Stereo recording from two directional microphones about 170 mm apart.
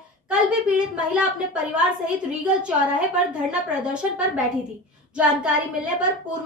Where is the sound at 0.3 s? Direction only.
5° right (ahead or behind).